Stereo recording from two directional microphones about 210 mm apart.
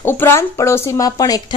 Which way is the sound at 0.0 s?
10° left (ahead or behind).